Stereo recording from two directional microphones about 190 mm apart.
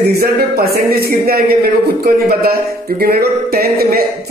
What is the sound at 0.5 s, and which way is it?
Speech, 55° right (ahead or behind).